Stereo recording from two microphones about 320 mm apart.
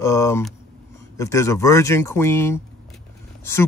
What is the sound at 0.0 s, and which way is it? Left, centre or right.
A man's voice, centre.